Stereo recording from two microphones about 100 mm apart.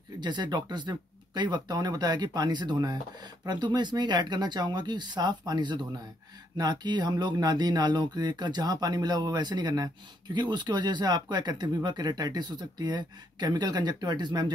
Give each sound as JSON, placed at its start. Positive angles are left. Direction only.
{"t": 0.2, "sound": "speech", "side_deg": -45}